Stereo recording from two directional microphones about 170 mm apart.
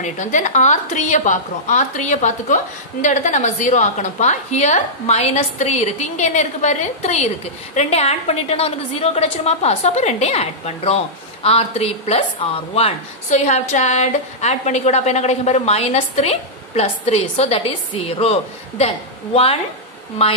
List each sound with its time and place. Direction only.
0.0 s a woman's voice: 45° left (ahead or behind)